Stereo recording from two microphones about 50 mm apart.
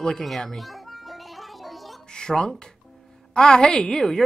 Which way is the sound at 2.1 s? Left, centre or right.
Centre.